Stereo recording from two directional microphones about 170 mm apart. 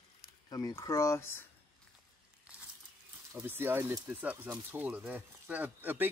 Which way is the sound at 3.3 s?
10° right (ahead or behind).